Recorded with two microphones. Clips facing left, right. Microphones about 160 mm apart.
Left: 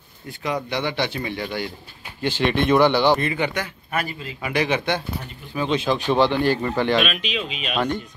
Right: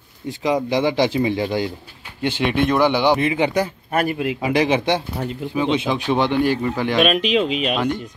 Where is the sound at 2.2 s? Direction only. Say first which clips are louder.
Right 2 dB; 65° right (ahead or behind).